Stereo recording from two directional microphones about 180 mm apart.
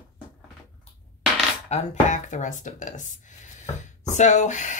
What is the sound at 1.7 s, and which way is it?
Speech, 40° left (ahead or behind).